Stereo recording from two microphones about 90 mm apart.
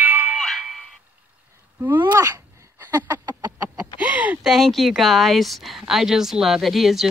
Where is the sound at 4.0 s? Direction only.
15° right (ahead or behind).